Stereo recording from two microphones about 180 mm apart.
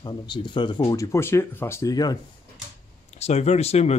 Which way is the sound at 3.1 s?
35° left (ahead or behind).